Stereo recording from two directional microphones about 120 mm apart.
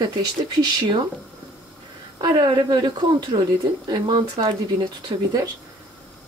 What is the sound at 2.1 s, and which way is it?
Speech, 40° right (ahead or behind).